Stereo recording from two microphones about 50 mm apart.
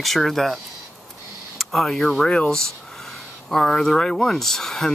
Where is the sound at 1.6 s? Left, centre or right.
Centre.